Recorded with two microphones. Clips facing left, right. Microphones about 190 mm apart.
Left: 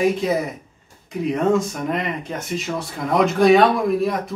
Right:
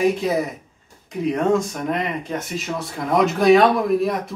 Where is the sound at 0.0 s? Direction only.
Centre (ahead or behind).